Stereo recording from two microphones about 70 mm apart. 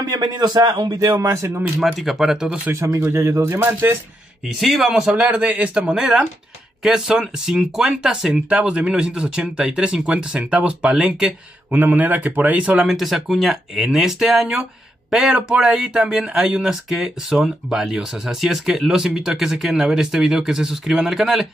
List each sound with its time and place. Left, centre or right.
0.1 s a man's voice: right
1.2 s speech: right
1.8 s speech: centre
2.7 s speech: right
4.6 s speech: centre
5.4 s speech: centre
11.7 s speech: right
12.8 s speech: centre